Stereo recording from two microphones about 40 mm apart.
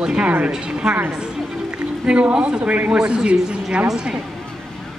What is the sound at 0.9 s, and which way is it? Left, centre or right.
Speech, right.